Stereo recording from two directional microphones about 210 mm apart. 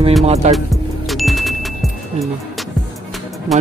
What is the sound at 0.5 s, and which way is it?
Music, centre (ahead or behind).